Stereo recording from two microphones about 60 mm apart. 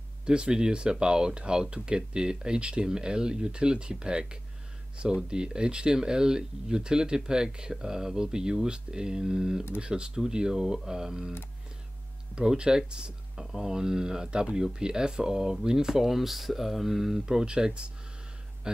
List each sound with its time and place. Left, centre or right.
0.2 s speech: centre
12.4 s speech: centre